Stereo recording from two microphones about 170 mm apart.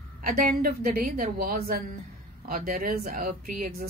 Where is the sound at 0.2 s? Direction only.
55° right (ahead or behind).